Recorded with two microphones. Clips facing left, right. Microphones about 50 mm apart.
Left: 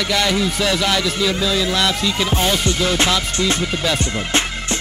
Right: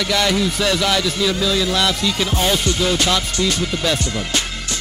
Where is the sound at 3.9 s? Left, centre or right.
Left.